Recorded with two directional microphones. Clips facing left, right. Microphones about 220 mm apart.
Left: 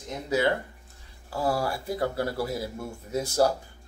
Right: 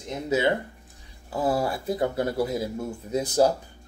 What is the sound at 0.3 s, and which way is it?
Speech, 20° right (ahead or behind).